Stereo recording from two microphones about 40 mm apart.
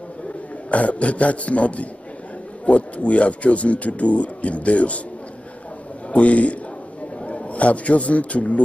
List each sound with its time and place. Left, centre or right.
0.7 s speech: left
6.1 s a man's voice: left